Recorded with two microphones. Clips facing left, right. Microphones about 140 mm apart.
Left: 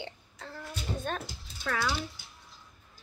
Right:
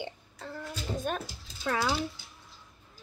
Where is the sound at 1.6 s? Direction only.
25° right (ahead or behind).